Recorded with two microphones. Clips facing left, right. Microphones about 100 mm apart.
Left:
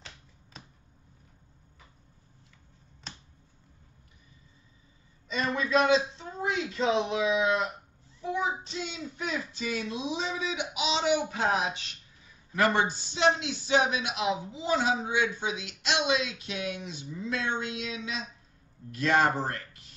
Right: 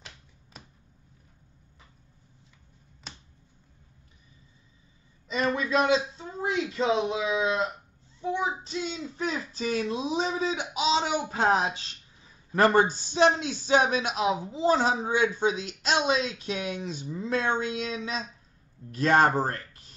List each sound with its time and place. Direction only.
0.0 s finger snapping: centre (ahead or behind)
5.4 s a man's voice: 25° right (ahead or behind)
8.2 s child singing: 30° right (ahead or behind)
9.1 s a man's voice: 35° right (ahead or behind)